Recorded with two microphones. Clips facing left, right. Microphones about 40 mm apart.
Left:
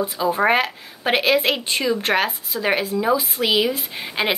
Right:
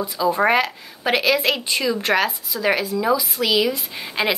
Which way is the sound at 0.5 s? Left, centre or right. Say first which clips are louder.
Even; left.